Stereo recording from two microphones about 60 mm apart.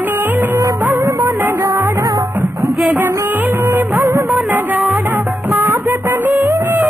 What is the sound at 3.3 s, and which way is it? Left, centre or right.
Music of bollywood, right.